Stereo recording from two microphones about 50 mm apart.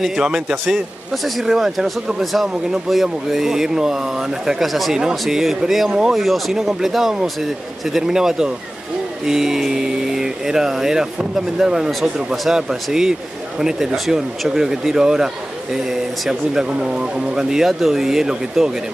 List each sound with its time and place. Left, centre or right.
0.0 s speech: centre
5.9 s speech: centre
6.1 s speech: centre